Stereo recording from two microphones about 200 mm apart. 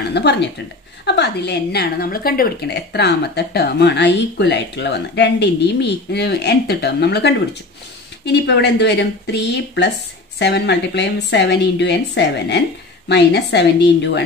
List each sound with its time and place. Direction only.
0.1 s a woman's voice: 60° left (ahead or behind)